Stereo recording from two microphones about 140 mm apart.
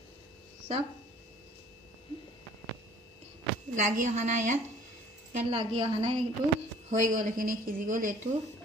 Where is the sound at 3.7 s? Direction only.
60° right (ahead or behind).